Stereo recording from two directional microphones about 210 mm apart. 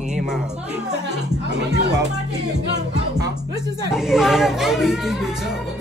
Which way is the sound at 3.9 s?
Centre (ahead or behind).